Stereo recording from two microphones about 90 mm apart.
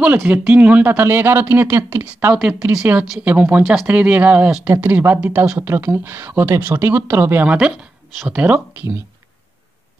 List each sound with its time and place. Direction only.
0.0 s speech: 15° right (ahead or behind)
2.7 s speech: 10° right (ahead or behind)
7.4 s speech: 10° right (ahead or behind)